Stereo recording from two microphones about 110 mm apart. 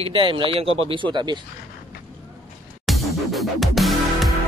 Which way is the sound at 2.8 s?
Centre (ahead or behind).